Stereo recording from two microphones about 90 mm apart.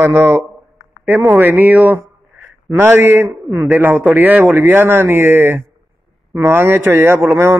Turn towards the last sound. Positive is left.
turn(degrees=-25)  # may be behind; listen again after turning